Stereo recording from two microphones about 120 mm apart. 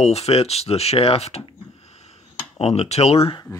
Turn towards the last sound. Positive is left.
turn(degrees=55)  # may be behind; listen again after turning